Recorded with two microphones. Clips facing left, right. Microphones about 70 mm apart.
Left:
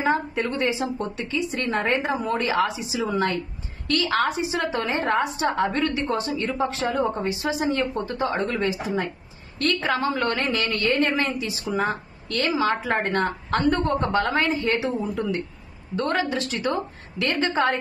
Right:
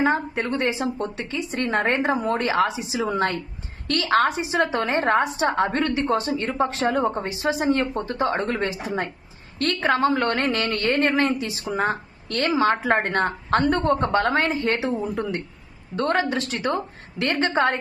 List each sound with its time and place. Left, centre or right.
0.0 s a woman's voice: right